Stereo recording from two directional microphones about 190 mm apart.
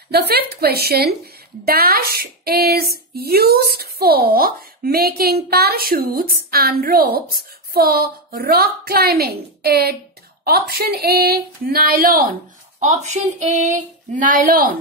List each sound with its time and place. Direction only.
0.1 s a woman's voice: 55° right (ahead or behind)
12.8 s speech: 40° right (ahead or behind)